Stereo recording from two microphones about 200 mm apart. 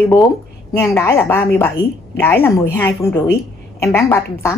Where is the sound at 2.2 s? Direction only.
10° left (ahead or behind).